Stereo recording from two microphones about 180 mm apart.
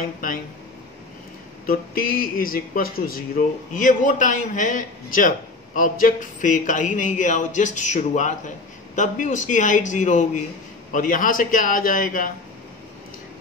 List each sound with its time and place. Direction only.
0.0 s speech: 50° left (ahead or behind)
1.7 s speech: 50° left (ahead or behind)